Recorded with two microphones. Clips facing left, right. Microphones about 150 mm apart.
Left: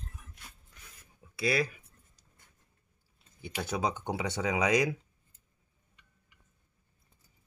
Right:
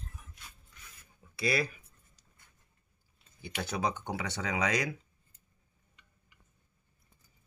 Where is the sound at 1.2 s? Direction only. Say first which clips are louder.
Left 2 dB; 10° left (ahead or behind).